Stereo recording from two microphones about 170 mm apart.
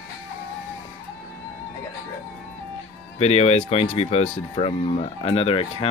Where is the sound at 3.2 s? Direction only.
40° left (ahead or behind).